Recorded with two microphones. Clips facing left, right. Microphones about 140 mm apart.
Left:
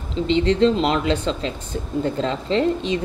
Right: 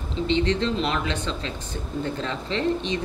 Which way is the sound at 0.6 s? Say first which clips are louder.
Left 7 dB; 35° left (ahead or behind).